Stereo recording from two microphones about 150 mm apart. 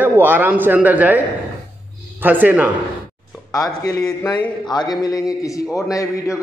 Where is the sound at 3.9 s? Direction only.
25° left (ahead or behind).